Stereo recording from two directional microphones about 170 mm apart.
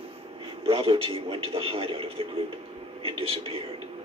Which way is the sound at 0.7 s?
30° right (ahead or behind).